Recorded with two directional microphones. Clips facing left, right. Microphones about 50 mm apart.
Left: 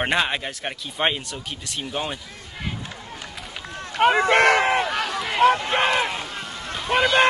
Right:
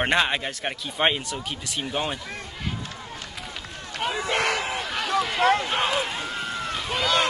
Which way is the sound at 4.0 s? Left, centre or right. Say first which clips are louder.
Left 9 dB; left.